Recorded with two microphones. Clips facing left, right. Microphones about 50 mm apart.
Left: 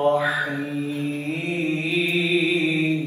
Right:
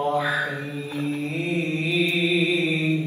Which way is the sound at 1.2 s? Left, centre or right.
Left.